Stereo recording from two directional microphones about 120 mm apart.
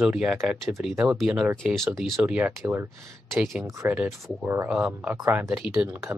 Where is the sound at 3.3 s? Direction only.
Centre (ahead or behind).